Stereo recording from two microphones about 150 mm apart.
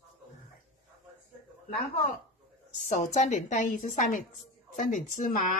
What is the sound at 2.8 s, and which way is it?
Speech, 55° left (ahead or behind).